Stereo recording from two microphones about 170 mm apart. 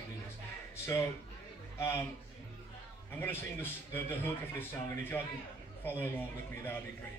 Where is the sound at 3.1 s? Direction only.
10° left (ahead or behind).